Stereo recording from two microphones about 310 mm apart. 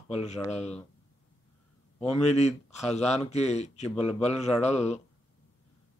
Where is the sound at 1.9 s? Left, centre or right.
Left.